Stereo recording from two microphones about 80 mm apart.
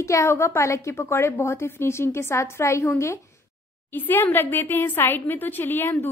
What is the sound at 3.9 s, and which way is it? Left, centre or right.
A woman's voice, left.